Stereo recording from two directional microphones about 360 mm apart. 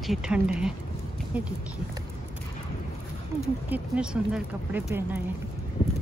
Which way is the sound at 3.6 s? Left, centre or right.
Centre.